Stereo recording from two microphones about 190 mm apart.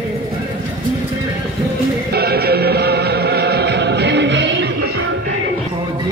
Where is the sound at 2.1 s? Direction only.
55° right (ahead or behind).